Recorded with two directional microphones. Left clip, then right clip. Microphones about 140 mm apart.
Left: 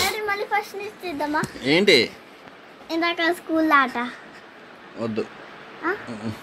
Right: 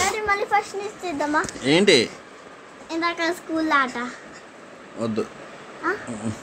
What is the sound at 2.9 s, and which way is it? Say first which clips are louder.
A child's voice: left 2 dB; 50° left (ahead or behind).